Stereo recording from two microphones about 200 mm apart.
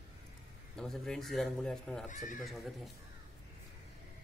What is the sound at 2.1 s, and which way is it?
Speech, 40° left (ahead or behind).